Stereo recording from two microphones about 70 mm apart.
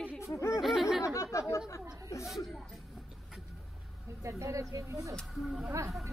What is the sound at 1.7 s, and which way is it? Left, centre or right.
Speech, left.